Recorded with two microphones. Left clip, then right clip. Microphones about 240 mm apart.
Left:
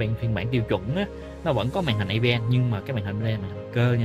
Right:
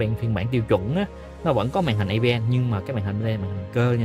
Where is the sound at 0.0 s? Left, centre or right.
Right.